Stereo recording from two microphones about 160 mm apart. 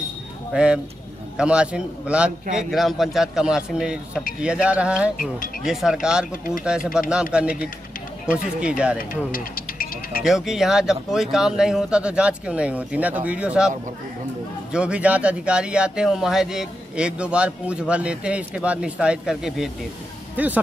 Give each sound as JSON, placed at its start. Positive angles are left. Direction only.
{"t": 0.5, "sound": "a man's voice", "side_deg": -5}
{"t": 8.5, "sound": "speech", "side_deg": -5}
{"t": 9.1, "sound": "music", "side_deg": 60}
{"t": 10.2, "sound": "a man's voice", "side_deg": 0}